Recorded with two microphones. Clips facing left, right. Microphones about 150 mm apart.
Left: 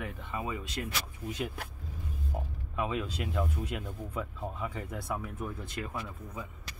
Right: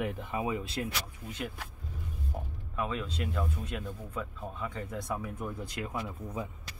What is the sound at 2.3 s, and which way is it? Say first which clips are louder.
Speech: left 1 dB; 15° left (ahead or behind).